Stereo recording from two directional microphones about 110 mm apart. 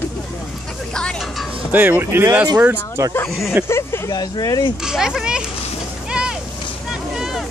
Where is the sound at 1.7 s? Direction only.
15° right (ahead or behind).